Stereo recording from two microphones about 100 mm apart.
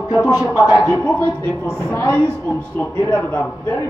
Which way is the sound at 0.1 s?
35° left (ahead or behind).